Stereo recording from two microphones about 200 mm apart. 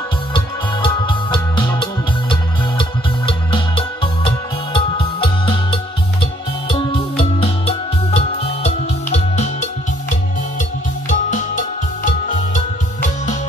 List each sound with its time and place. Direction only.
0.8 s music: 25° left (ahead or behind)
11.1 s music: 40° left (ahead or behind)